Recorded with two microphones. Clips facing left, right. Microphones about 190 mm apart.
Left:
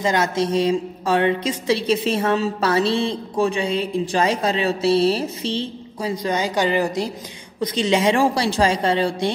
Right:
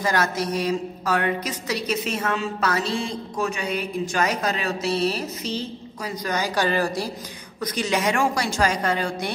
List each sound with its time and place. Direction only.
0.0 s a woman's voice: 25° left (ahead or behind)